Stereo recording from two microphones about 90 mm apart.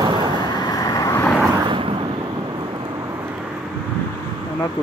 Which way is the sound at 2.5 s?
50° right (ahead or behind).